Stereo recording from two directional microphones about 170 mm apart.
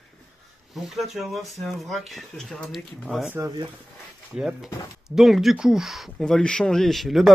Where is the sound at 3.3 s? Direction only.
20° right (ahead or behind).